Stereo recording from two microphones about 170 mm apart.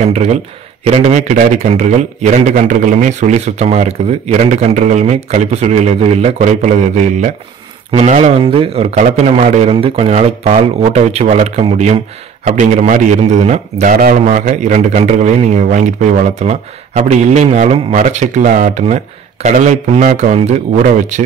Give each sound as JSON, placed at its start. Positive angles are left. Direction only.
{"t": 0.0, "sound": "a man's voice", "side_deg": -40}